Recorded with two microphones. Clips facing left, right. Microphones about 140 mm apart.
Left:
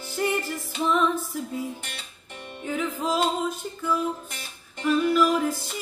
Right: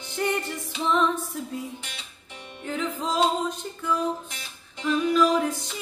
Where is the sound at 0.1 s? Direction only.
5° left (ahead or behind).